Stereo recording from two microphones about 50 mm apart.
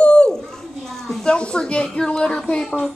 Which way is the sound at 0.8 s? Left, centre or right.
Centre.